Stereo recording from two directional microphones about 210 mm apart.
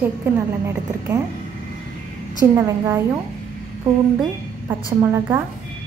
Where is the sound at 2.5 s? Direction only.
15° right (ahead or behind).